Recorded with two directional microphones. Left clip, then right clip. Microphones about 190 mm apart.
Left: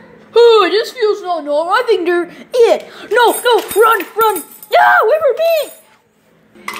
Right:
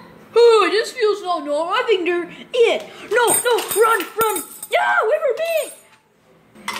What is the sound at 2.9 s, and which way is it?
Speech, 10° left (ahead or behind).